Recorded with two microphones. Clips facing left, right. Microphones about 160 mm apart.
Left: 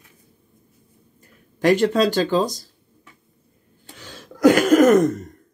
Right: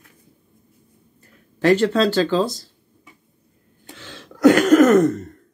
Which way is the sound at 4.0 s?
10° left (ahead or behind).